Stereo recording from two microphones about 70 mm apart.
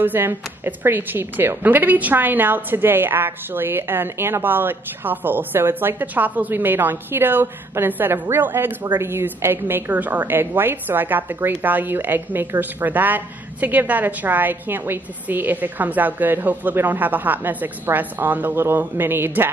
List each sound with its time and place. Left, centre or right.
0.0 s a woman's voice: right